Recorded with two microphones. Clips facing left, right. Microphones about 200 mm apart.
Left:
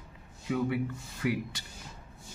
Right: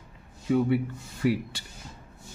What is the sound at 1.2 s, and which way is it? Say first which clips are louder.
Speech: right 5 dB; 30° right (ahead or behind).